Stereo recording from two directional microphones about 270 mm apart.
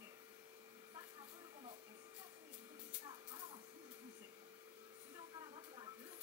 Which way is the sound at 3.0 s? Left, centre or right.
Centre.